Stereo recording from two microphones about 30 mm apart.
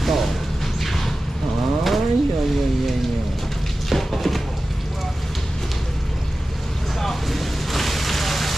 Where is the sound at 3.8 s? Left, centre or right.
Centre.